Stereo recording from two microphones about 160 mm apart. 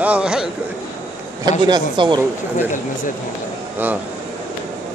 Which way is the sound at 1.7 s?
30° right (ahead or behind).